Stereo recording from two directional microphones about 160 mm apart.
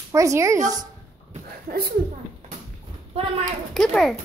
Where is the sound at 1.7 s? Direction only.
65° right (ahead or behind).